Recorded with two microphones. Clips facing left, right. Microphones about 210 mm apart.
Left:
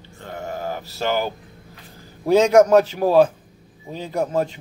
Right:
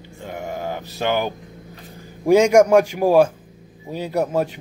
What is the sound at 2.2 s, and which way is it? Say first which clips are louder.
Speech: right 1 dB; 10° right (ahead or behind).